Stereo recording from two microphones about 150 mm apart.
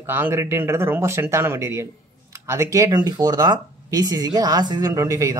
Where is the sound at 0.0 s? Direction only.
15° right (ahead or behind).